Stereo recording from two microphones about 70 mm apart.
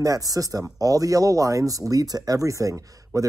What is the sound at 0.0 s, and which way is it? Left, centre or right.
Speech, right.